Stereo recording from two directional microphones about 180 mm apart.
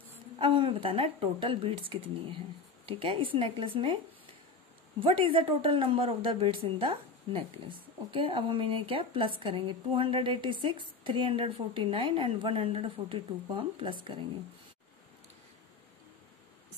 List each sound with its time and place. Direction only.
0.4 s a woman's voice: 30° right (ahead or behind)
5.0 s a woman's voice: 30° right (ahead or behind)